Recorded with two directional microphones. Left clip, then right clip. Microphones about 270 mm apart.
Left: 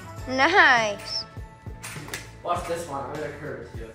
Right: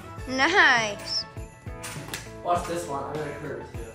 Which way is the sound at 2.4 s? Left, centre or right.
Centre.